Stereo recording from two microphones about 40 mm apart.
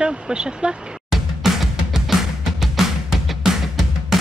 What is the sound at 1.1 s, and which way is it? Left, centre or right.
Music, centre.